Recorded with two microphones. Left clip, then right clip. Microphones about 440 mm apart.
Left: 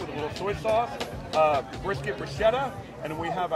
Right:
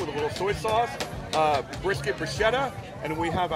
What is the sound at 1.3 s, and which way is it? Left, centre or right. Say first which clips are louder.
Speech: left 1 dB; right.